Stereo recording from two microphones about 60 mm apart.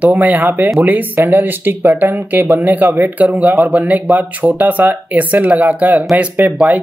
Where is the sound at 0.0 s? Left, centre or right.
Right.